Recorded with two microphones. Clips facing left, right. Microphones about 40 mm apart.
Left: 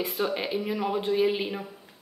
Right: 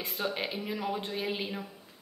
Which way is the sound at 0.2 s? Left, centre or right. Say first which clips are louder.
Left 4 dB; centre.